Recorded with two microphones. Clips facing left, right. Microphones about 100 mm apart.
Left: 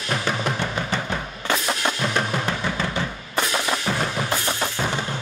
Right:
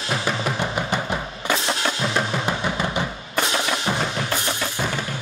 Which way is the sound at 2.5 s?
15° right (ahead or behind).